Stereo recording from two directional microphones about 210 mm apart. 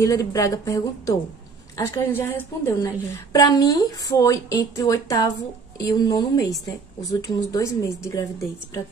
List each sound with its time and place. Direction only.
0.0 s a woman's voice: 15° left (ahead or behind)